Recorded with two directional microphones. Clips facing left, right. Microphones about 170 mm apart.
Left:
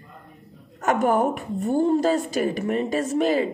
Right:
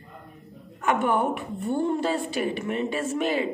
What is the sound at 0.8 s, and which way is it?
A woman's voice, 40° left (ahead or behind).